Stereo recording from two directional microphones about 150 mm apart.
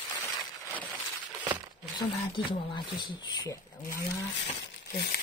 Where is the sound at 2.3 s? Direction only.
30° left (ahead or behind).